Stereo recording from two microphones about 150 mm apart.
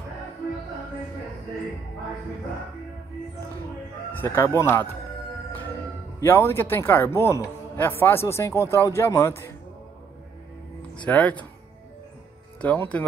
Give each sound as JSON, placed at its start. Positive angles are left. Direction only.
{"t": 4.1, "sound": "speech", "side_deg": 15}
{"t": 6.2, "sound": "speech", "side_deg": 15}
{"t": 11.1, "sound": "speech", "side_deg": 10}
{"t": 12.6, "sound": "speech", "side_deg": 10}